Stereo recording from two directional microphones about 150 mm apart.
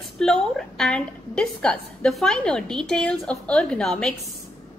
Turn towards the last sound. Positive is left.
turn(degrees=5)  # may be behind; listen again after turning